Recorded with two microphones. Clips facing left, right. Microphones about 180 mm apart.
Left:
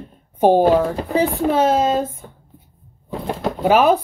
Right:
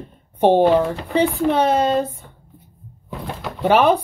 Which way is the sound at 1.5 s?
5° left (ahead or behind).